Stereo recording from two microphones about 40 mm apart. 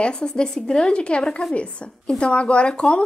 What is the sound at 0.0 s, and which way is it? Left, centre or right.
A woman's voice, left.